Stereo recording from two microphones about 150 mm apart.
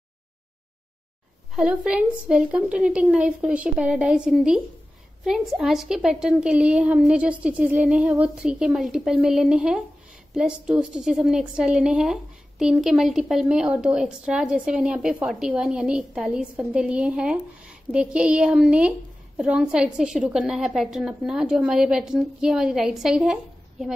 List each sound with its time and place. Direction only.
1.5 s a woman's voice: 5° right (ahead or behind)